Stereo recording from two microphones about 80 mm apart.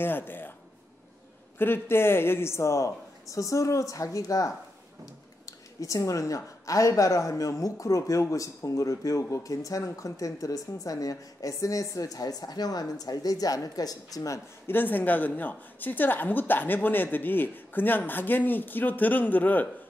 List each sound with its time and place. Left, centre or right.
0.0 s a woman's voice: left
1.6 s speech: left
5.8 s speech: left
14.7 s a woman's voice: left